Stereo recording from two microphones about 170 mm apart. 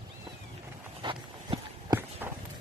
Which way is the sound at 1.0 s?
30° right (ahead or behind).